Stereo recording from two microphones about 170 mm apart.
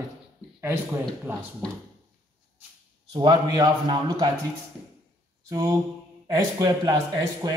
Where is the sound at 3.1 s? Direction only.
25° right (ahead or behind).